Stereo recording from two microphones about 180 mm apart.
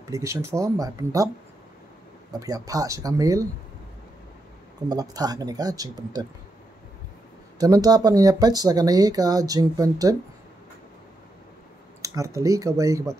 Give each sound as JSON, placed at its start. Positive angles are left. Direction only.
{"t": 0.0, "sound": "speech", "side_deg": -15}
{"t": 2.4, "sound": "speech", "side_deg": -20}
{"t": 4.8, "sound": "speech", "side_deg": -20}
{"t": 7.5, "sound": "speech", "side_deg": -20}
{"t": 12.0, "sound": "speech", "side_deg": -15}